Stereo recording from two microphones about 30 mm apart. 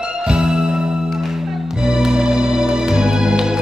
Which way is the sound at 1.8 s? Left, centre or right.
Right.